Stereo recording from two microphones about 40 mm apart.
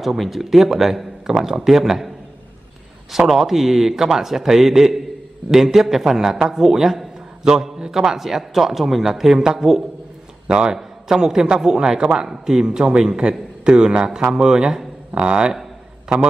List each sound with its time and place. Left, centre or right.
0.0 s a man's voice: centre
7.4 s a man's voice: centre
10.4 s a man's voice: right
10.7 s a man's voice: centre